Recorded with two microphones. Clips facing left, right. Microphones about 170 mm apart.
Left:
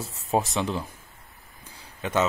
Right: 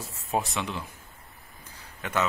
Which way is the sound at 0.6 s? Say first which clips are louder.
Left 5 dB; 40° left (ahead or behind).